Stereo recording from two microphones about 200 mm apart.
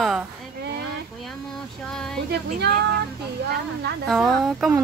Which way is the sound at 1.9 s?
5° left (ahead or behind).